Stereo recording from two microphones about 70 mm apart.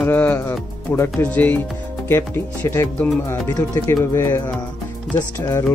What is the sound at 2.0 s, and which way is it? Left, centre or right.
Speech, left.